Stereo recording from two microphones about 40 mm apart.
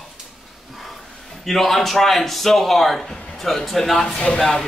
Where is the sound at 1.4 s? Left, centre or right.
Centre.